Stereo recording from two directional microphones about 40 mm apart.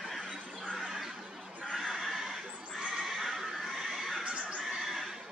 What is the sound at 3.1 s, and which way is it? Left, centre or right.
Neigh, centre.